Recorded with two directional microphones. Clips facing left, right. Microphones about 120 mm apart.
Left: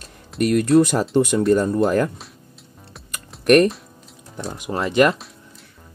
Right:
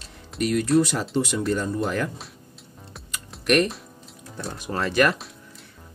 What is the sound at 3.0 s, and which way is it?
Music, 45° left (ahead or behind).